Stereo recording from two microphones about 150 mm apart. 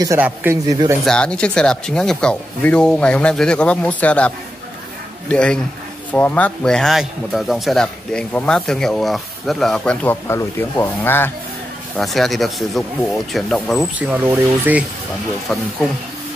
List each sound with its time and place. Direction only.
0.2 s speech: 10° right (ahead or behind)
0.7 s speech: 25° right (ahead or behind)
1.0 s speech: 5° left (ahead or behind)
5.3 s a man's voice: 5° left (ahead or behind)
10.2 s speech: 15° left (ahead or behind)
12.0 s a man's voice: centre (ahead or behind)
13.9 s speech: 10° right (ahead or behind)